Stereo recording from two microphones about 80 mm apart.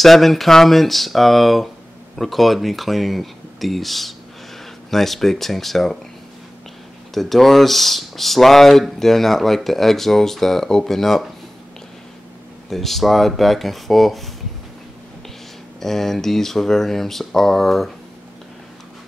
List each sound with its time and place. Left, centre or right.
0.0 s speech: centre
7.2 s speech: centre
12.6 s speech: centre
15.8 s speech: centre